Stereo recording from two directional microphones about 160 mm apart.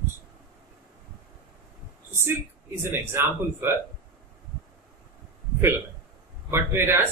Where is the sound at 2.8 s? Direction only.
15° right (ahead or behind).